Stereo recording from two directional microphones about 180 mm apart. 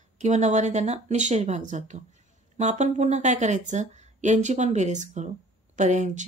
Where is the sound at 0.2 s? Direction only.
40° right (ahead or behind).